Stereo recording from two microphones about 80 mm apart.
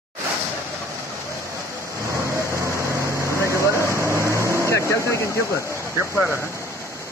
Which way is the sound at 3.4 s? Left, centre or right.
Right.